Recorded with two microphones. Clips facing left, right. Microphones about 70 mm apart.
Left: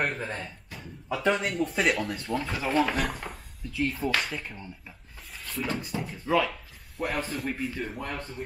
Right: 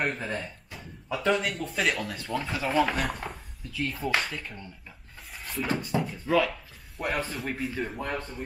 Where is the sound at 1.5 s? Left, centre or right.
Centre.